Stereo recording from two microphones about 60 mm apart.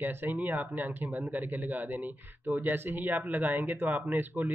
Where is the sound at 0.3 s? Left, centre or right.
Right.